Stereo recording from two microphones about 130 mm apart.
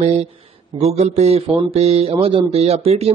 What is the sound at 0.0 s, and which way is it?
A man's voice, 55° right (ahead or behind).